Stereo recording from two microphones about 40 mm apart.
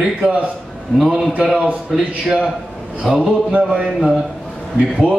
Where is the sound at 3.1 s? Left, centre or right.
Right.